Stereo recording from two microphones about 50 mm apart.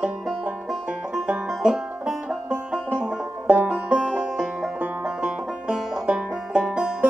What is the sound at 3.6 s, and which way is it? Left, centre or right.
Music, right.